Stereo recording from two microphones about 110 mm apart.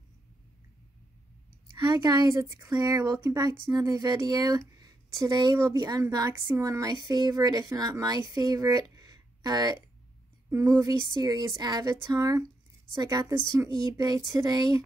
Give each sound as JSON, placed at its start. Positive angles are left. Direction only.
{"t": 1.8, "sound": "a woman's voice", "side_deg": -40}